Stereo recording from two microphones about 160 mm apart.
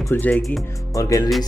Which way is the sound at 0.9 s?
20° left (ahead or behind).